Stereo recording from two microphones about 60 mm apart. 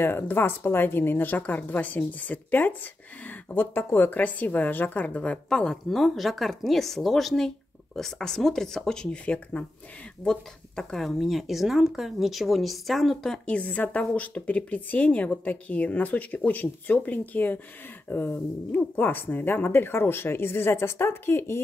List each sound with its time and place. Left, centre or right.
0.0 s speech: left
10.2 s speech: centre
13.5 s speech: left